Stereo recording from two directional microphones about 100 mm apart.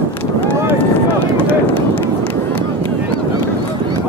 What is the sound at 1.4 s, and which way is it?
Run, 20° left (ahead or behind).